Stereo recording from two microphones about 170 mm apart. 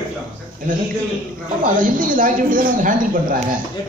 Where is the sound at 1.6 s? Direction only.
50° right (ahead or behind).